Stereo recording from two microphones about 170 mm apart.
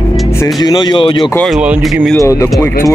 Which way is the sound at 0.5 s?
25° left (ahead or behind).